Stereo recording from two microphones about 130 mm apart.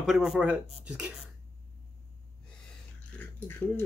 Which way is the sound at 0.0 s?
5° right (ahead or behind).